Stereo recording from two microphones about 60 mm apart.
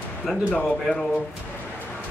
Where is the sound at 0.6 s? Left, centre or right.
Centre.